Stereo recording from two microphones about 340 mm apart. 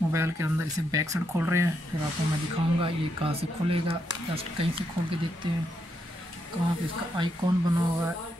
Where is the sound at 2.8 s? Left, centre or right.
Centre.